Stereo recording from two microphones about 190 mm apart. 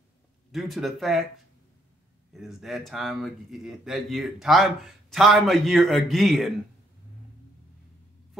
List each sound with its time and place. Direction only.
0.5 s speech: centre (ahead or behind)
2.3 s speech: centre (ahead or behind)